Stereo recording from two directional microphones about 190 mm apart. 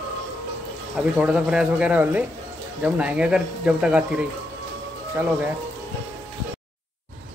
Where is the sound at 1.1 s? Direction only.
5° right (ahead or behind).